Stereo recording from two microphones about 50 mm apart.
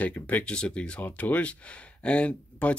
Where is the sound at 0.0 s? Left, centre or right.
Left.